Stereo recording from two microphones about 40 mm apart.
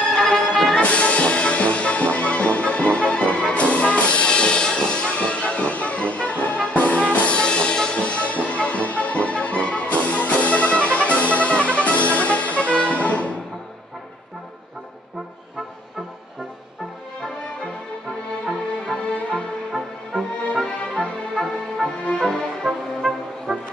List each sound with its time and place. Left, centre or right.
0.0 s music: centre
0.8 s music: left
8.0 s music: left
20.1 s music: centre
22.1 s music: centre
22.7 s music: centre